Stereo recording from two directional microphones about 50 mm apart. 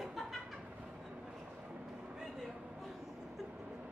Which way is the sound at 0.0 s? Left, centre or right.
Centre.